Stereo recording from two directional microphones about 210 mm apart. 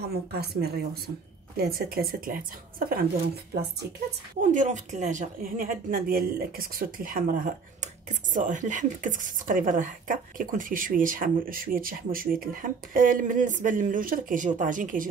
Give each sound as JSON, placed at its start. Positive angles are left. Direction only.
{"t": 0.1, "sound": "speech", "side_deg": -50}
{"t": 4.4, "sound": "a woman's voice", "side_deg": -35}